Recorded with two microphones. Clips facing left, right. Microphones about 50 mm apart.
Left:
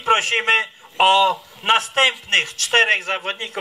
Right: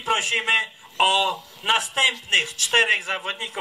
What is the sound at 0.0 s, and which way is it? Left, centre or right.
A man's voice, left.